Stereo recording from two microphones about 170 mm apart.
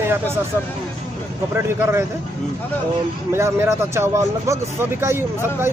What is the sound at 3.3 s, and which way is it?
A man's voice, 15° right (ahead or behind).